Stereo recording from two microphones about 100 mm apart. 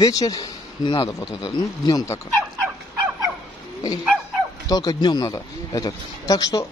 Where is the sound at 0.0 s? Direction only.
35° left (ahead or behind).